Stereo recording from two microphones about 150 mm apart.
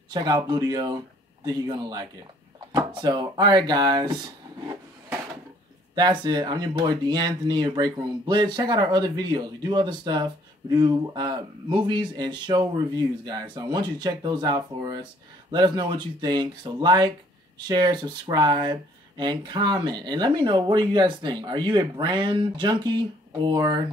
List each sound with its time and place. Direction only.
0.1 s speech: 30° right (ahead or behind)
5.9 s speech: 30° right (ahead or behind)